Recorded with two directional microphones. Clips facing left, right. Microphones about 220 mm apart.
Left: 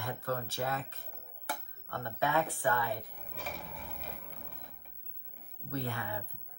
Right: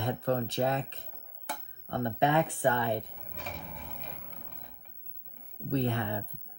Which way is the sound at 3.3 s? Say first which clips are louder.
Right 1 dB; centre (ahead or behind).